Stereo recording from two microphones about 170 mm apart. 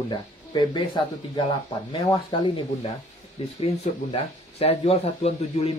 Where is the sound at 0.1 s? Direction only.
25° left (ahead or behind).